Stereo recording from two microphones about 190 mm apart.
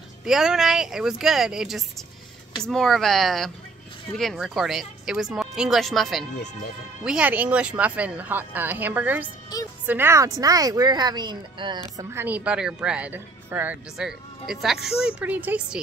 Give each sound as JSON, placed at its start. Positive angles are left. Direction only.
{"t": 0.2, "sound": "a woman's voice", "side_deg": -5}
{"t": 9.5, "sound": "a woman's voice", "side_deg": 20}
{"t": 9.8, "sound": "a woman's voice", "side_deg": -10}